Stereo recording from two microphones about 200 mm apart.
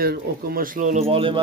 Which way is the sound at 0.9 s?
25° right (ahead or behind).